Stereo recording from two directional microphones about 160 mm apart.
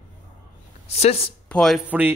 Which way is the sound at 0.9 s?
40° left (ahead or behind).